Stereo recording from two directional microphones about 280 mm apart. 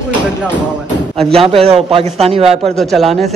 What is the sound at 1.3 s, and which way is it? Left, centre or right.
A man's voice, right.